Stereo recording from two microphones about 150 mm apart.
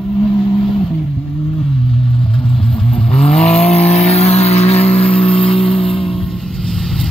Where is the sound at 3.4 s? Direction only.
45° left (ahead or behind).